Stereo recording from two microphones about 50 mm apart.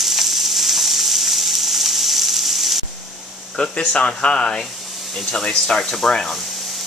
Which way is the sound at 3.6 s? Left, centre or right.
Left.